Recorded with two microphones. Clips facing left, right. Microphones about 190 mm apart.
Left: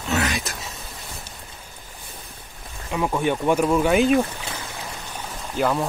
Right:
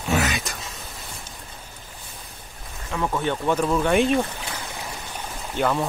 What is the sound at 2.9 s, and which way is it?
Speech, 15° left (ahead or behind).